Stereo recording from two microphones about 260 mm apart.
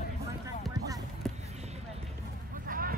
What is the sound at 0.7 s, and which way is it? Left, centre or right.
Music, centre.